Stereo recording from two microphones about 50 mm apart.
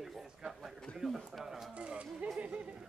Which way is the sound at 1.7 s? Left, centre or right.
Right.